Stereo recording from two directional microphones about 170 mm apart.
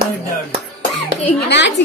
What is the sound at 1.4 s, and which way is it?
Speech, 85° left.